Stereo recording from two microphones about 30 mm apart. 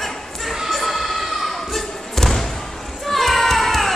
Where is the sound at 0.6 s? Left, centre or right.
Centre.